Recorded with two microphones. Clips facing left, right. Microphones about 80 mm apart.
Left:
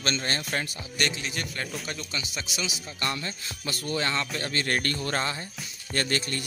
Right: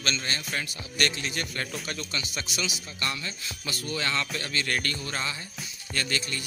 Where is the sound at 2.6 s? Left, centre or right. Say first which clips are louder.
Left 3 dB; left.